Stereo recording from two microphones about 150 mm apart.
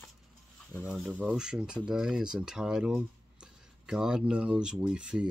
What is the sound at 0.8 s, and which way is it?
Speech, 5° right (ahead or behind).